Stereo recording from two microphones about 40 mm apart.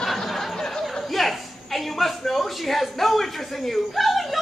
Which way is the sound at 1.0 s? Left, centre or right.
Centre.